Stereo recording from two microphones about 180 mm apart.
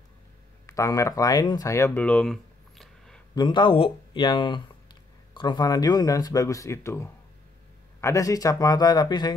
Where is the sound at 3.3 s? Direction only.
25° left (ahead or behind).